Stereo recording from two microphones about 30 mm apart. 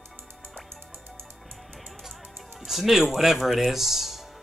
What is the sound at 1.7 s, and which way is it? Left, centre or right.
Music, centre.